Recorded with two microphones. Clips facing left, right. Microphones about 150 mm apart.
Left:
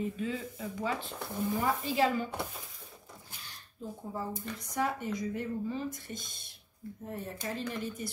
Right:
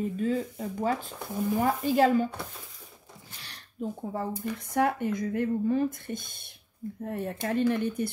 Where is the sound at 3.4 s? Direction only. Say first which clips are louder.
Right 9 dB; 70° right (ahead or behind).